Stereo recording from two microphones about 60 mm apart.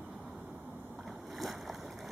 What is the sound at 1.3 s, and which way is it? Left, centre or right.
Boat, centre.